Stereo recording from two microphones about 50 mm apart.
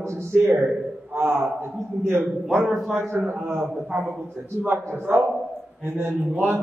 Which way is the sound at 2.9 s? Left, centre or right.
Right.